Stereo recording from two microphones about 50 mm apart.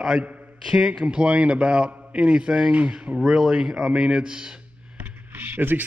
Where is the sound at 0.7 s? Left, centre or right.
Right.